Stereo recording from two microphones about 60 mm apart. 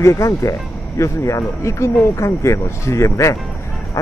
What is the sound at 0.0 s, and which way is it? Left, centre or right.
Speech, left.